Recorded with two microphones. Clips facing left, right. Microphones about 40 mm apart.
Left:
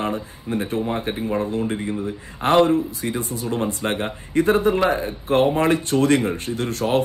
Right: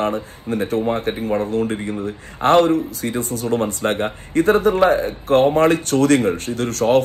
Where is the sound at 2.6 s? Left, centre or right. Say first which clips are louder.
Right 1 dB; right.